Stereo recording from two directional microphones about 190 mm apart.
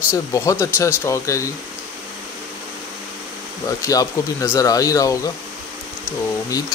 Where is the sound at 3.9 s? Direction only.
15° left (ahead or behind).